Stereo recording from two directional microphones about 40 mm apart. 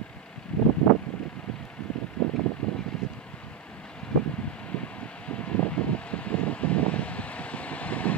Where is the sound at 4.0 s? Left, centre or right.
Left.